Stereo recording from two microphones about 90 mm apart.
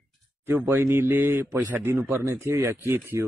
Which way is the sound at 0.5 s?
20° right (ahead or behind).